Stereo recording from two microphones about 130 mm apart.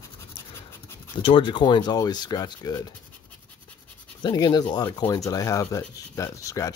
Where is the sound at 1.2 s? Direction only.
40° left (ahead or behind).